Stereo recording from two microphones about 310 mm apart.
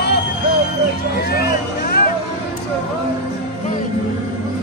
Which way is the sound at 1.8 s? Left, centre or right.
Left.